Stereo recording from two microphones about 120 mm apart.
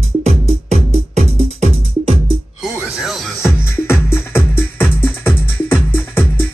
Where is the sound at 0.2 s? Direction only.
65° right (ahead or behind).